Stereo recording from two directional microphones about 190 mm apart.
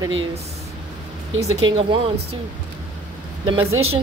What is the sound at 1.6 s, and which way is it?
Speech, 25° right (ahead or behind).